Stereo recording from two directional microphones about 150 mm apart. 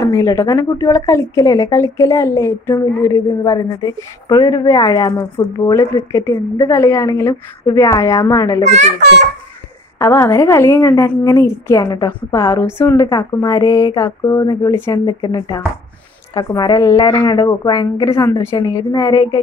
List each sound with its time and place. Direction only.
0.0 s a woman's voice: 20° left (ahead or behind)
8.6 s a child's voice: 50° right (ahead or behind)
9.9 s a woman's voice: 20° left (ahead or behind)